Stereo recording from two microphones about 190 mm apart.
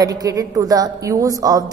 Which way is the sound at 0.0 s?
20° right (ahead or behind).